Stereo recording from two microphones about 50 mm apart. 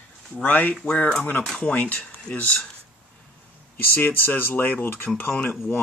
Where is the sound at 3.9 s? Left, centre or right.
Left.